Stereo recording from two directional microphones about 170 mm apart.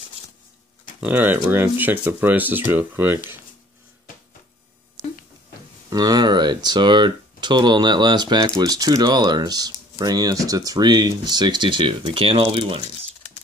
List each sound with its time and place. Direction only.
1.0 s speech: 10° right (ahead or behind)
5.9 s speech: 25° right (ahead or behind)